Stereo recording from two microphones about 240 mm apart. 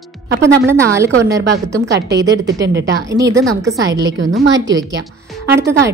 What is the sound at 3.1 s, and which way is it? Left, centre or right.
Speech, centre.